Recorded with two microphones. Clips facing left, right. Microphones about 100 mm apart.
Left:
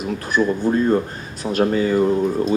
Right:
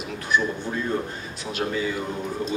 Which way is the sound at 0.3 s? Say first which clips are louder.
Left 7 dB; 40° left (ahead or behind).